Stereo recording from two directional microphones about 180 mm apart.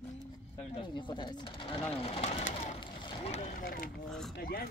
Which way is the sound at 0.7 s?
25° left (ahead or behind).